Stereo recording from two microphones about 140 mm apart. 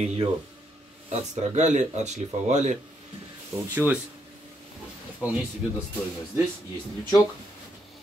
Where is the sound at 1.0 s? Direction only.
55° right (ahead or behind).